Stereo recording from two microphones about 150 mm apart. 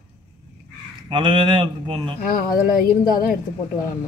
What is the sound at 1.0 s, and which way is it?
Speech, 35° right (ahead or behind).